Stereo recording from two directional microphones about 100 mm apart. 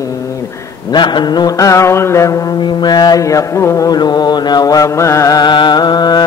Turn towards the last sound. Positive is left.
turn(degrees=45)  # may be behind; listen again after turning